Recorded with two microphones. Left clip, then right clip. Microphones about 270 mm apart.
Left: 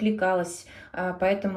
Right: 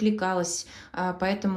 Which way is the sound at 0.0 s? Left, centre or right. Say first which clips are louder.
Left 2 dB; right.